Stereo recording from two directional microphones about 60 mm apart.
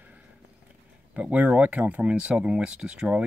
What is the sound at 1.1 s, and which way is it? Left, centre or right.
Speech, right.